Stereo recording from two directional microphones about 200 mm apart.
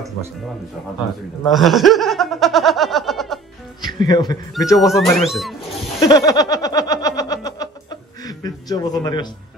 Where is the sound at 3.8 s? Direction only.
20° left (ahead or behind).